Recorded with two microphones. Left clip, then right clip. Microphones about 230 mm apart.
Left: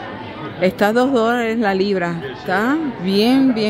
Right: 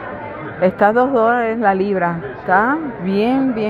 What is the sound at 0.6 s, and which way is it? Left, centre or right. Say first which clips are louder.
Speech: right 2 dB; left.